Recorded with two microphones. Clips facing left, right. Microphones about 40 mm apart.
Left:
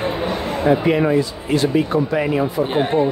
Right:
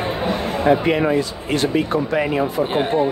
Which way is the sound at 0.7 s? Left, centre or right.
Right.